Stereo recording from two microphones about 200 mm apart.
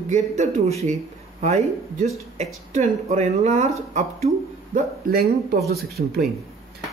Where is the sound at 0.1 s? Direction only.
35° right (ahead or behind).